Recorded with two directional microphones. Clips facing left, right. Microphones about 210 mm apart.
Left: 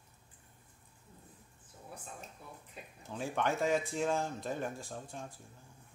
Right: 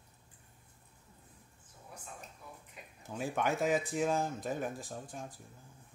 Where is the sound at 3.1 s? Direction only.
10° right (ahead or behind).